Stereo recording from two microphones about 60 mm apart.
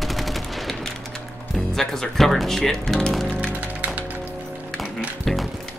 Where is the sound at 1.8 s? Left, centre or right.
Centre.